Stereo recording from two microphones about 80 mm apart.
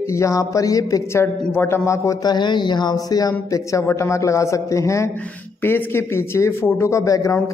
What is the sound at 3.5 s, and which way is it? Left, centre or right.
A man's voice, left.